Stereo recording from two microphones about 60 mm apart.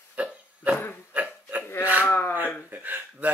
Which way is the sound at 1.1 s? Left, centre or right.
Right.